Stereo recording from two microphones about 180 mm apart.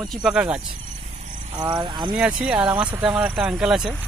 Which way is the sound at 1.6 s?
25° right (ahead or behind).